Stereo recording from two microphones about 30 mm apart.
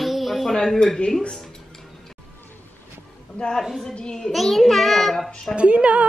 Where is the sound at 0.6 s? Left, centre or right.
Centre.